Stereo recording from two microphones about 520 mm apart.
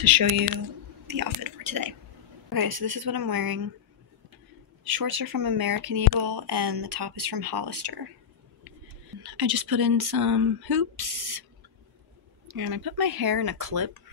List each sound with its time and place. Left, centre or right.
0.0 s speech: right
4.8 s speech: right
9.2 s speech: right
12.4 s speech: right